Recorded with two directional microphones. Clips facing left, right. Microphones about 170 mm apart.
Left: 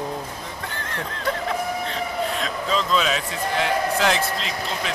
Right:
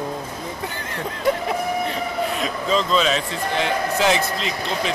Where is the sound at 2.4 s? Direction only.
Centre (ahead or behind).